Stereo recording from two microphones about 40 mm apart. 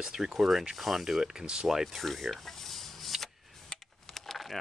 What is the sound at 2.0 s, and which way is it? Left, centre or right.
Camera, centre.